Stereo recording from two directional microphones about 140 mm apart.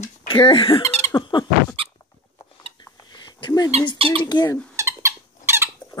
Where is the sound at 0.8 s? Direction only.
50° right (ahead or behind).